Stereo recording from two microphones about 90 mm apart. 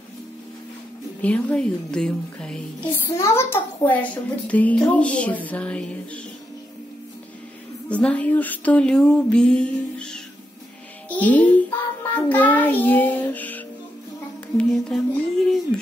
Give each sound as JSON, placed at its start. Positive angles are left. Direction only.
{"t": 1.2, "sound": "a child's voice", "side_deg": 15}
{"t": 3.1, "sound": "a child's voice", "side_deg": 30}
{"t": 7.9, "sound": "a child's voice", "side_deg": 15}
{"t": 11.1, "sound": "music", "side_deg": 15}
{"t": 14.6, "sound": "music", "side_deg": 10}